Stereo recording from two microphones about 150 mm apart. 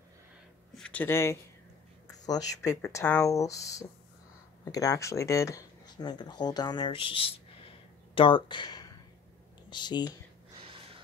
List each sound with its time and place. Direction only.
0.7 s speech: 10° left (ahead or behind); by 10.1 s 30° left (ahead or behind)
10.6 s gasp: 35° right (ahead or behind)